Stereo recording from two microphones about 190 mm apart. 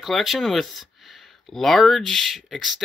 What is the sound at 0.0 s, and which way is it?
Speech, centre (ahead or behind).